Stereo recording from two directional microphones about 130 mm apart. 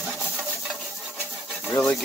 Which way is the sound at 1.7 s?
20° left (ahead or behind).